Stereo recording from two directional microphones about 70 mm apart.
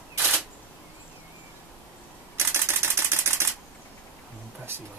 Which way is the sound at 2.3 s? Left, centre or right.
Right.